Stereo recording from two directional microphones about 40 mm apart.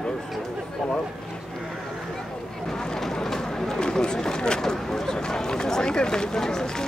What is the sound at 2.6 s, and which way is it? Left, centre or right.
Run, centre.